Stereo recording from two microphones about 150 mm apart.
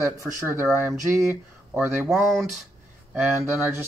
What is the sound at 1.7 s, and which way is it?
Speech, 10° right (ahead or behind).